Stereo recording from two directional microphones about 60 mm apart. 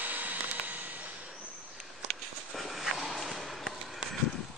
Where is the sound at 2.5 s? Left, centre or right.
Centre.